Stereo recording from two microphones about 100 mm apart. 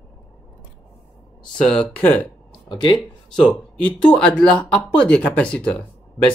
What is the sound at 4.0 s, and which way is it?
Speech, 10° left (ahead or behind).